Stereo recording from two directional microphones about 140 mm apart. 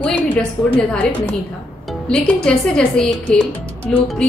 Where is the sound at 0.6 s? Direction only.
25° left (ahead or behind).